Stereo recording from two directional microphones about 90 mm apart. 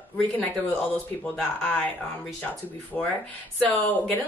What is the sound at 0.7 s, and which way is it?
A woman's voice, 10° left (ahead or behind).